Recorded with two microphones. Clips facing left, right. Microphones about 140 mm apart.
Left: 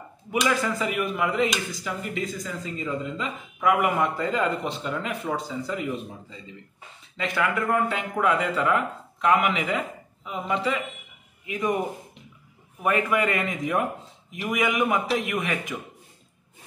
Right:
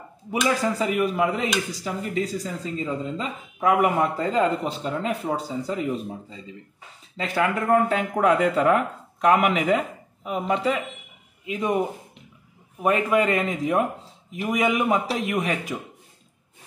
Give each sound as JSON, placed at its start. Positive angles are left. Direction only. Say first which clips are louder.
{"t": 0.3, "sound": "a man's voice", "louder": "right 1 dB", "side_deg": -35}
{"t": 7.2, "sound": "speech", "louder": "right 2 dB", "side_deg": -35}
{"t": 10.5, "sound": "a man's voice", "louder": "right 2 dB", "side_deg": -40}
{"t": 12.8, "sound": "a man's voice", "louder": "right 3 dB", "side_deg": -30}